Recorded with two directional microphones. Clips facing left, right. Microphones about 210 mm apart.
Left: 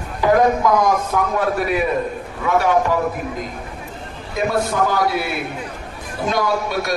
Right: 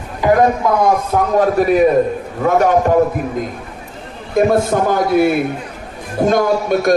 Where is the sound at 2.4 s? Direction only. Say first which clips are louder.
Right 4 dB; 45° right (ahead or behind).